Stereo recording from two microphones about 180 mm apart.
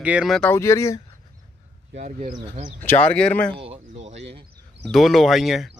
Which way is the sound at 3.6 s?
35° right (ahead or behind).